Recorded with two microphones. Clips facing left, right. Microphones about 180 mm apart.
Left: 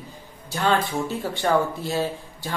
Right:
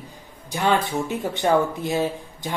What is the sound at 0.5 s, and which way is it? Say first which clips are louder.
Speech: right 1 dB; 15° right (ahead or behind).